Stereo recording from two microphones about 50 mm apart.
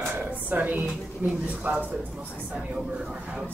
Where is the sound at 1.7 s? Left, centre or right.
Right.